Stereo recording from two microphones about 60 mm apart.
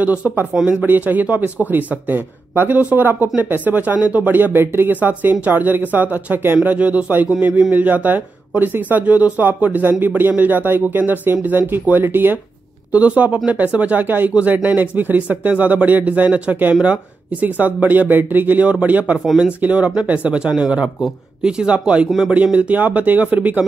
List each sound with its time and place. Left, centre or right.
0.0 s speech: right
7.2 s speech: centre
7.7 s speech: right
12.9 s speech: right
19.1 s speech: centre
19.6 s speech: right